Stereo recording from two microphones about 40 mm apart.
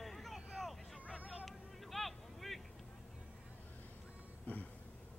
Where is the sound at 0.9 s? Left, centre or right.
Right.